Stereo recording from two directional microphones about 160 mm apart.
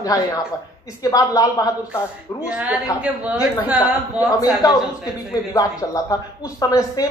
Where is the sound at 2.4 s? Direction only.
5° right (ahead or behind).